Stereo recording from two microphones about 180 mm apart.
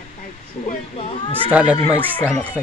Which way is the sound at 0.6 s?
35° left (ahead or behind).